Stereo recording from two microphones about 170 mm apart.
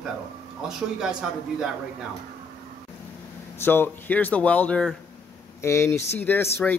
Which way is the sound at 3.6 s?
10° left (ahead or behind).